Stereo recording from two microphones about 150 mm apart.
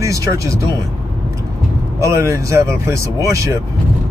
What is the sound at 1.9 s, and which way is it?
Speech, 20° right (ahead or behind).